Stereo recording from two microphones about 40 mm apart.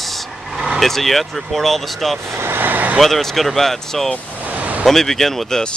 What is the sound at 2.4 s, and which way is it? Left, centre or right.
Speech, right.